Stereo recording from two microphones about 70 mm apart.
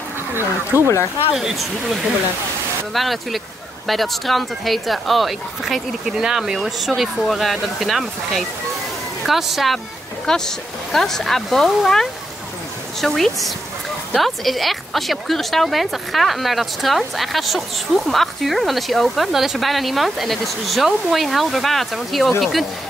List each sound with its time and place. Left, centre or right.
0.3 s speech: right
1.3 s speech: centre
2.9 s speech: centre